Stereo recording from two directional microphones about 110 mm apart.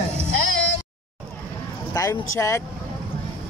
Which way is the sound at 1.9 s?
30° left (ahead or behind).